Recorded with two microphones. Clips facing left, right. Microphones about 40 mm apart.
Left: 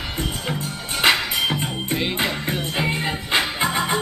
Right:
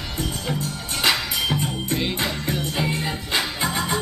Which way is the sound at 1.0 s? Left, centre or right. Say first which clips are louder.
Left 3 dB; left.